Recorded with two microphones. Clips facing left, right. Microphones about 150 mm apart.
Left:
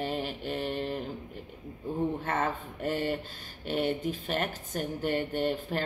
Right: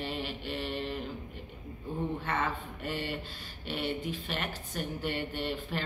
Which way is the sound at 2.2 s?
45° left (ahead or behind).